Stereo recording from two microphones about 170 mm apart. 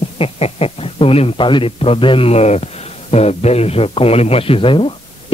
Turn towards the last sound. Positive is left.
turn(degrees=30)  # may be behind; listen again after turning